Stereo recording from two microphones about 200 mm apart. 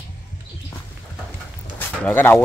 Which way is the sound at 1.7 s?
10° left (ahead or behind).